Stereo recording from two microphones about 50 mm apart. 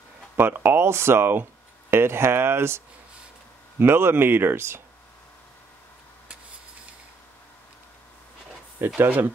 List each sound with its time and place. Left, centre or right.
0.4 s speech: right
3.8 s speech: right
8.8 s speech: right